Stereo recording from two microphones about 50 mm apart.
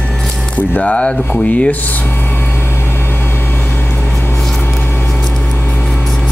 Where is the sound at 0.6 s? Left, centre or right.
Left.